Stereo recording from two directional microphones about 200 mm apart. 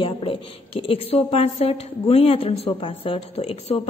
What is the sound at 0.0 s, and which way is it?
A woman's voice, 25° left (ahead or behind).